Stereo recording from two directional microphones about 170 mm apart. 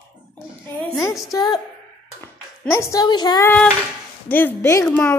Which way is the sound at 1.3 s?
25° left (ahead or behind).